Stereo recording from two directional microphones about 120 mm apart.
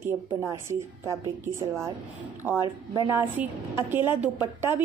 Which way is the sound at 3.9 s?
20° right (ahead or behind).